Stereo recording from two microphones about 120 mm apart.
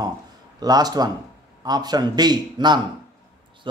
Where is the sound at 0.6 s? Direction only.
35° right (ahead or behind).